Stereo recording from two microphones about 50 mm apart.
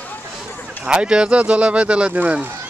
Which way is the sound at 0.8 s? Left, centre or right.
Right.